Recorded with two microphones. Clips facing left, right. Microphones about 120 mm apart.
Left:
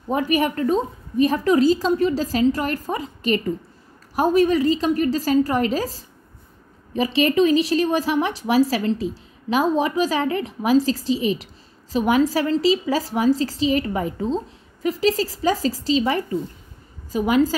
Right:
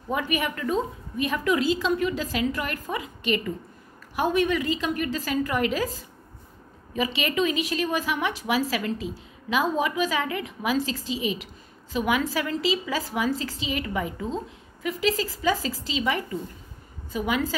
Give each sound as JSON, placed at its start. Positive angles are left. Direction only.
{"t": 0.1, "sound": "a woman's voice", "side_deg": 35}